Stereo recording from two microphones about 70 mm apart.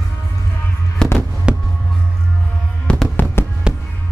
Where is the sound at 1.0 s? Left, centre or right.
Centre.